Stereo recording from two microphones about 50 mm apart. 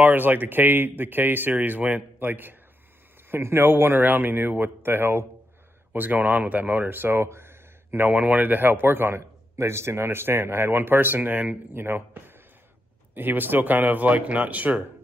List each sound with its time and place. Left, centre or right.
0.0 s a man's voice: right
5.9 s speech: right
7.2 s a sound: right
8.1 s a man's voice: right
11.7 s a man's voice: right